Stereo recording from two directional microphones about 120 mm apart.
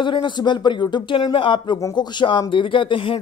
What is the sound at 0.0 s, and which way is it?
Speech, 40° left (ahead or behind).